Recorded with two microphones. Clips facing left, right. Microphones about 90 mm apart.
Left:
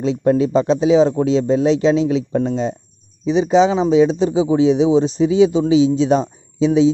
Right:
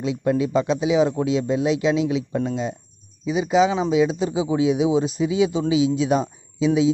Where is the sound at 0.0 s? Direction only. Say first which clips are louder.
Left 6 dB; 30° left (ahead or behind).